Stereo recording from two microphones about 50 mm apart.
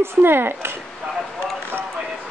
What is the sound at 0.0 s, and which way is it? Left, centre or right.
Speech, right.